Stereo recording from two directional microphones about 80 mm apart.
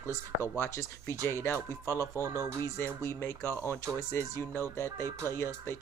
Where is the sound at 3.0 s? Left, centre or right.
Left.